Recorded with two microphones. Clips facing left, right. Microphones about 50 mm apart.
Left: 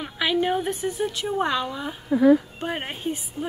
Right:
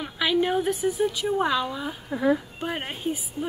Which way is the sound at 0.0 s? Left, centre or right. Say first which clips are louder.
Even; centre.